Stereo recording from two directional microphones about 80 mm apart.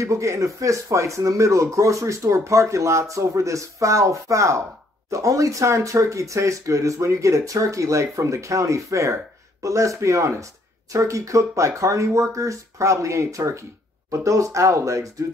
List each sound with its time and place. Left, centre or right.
0.0 s speech: right